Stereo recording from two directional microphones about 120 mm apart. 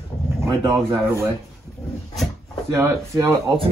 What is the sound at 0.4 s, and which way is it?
Speech, 25° right (ahead or behind).